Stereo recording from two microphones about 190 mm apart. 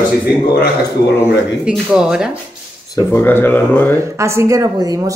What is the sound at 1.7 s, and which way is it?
Speech, 5° right (ahead or behind).